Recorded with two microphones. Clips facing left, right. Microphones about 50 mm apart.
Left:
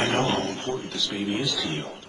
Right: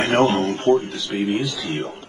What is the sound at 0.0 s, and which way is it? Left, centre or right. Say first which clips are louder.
A woman's voice: right 6 dB; right.